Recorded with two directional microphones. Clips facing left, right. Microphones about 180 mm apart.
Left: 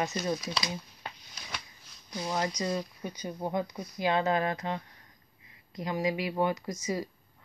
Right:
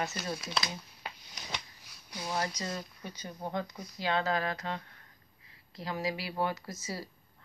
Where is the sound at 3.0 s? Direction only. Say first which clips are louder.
Left 6 dB; 15° left (ahead or behind).